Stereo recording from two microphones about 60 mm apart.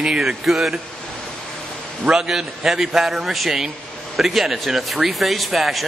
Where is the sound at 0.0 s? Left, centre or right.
Centre.